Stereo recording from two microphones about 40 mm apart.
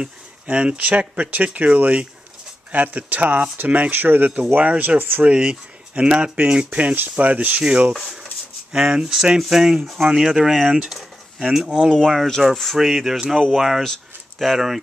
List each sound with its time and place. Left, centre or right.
0.5 s speech: right
3.9 s speech: right
5.2 s speech: right
6.3 s speech: right
8.7 s speech: centre
10.9 s a sound: centre
11.5 s speech: centre